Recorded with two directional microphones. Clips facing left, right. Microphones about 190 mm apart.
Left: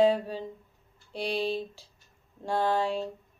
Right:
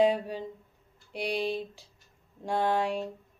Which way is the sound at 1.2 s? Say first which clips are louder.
Left 1 dB; 30° left (ahead or behind).